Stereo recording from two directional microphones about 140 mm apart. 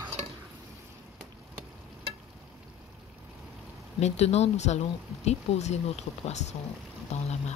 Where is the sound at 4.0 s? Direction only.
50° left (ahead or behind).